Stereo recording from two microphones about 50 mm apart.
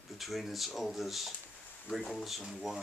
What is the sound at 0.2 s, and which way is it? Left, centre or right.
Speech, centre.